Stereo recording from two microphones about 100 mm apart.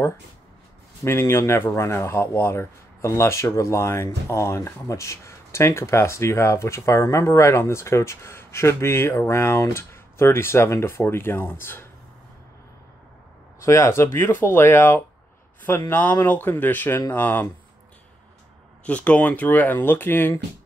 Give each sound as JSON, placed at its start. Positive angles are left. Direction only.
{"t": 1.0, "sound": "speech", "side_deg": 25}
{"t": 13.7, "sound": "speech", "side_deg": 25}
{"t": 18.9, "sound": "speech", "side_deg": 15}